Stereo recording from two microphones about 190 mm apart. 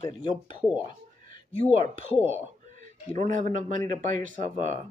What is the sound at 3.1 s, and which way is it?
Speech, 40° right (ahead or behind).